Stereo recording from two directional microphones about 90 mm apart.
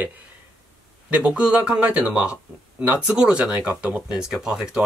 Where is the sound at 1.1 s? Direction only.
10° right (ahead or behind).